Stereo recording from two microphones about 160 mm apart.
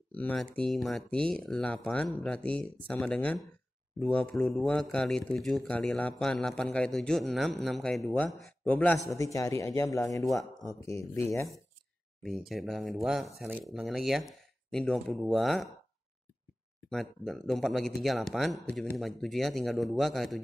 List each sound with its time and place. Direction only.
0.1 s speech: 5° left (ahead or behind)
9.1 s speech: 20° left (ahead or behind)
11.1 s speech: 20° left (ahead or behind)
12.2 s speech: centre (ahead or behind)
16.9 s speech: centre (ahead or behind)